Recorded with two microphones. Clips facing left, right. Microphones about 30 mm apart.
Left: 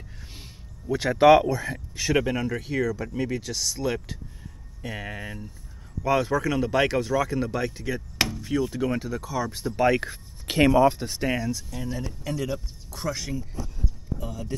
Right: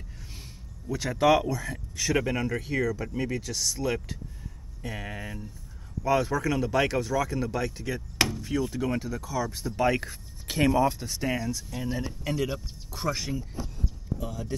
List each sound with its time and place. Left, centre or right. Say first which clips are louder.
0.4 s a sound: left 1 dB; left
1.4 s speech: left 4 dB; left
2.3 s speech: left 1 dB; centre
10.4 s a sound: left 5 dB; left
10.7 s speech: left 5 dB; centre
11.3 s speech: left 3 dB; centre
11.7 s speech: even; centre